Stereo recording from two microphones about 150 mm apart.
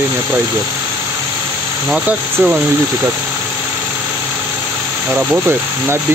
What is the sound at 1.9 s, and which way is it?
Speech, 10° right (ahead or behind).